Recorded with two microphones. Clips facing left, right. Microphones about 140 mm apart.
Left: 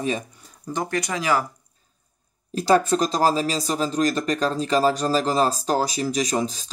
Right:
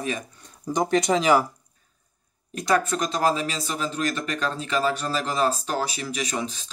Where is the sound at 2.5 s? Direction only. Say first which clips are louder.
Left 5 dB; 30° left (ahead or behind).